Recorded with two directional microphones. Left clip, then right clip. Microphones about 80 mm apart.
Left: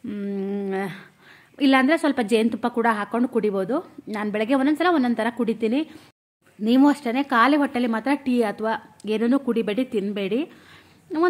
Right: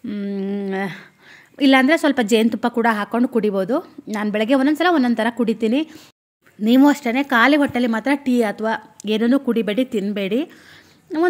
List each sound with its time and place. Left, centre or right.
0.0 s a sound: centre
1.6 s a woman's voice: right
11.1 s speech: centre